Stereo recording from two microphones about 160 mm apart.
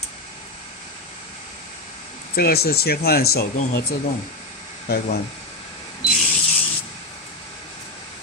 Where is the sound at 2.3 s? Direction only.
75° left (ahead or behind).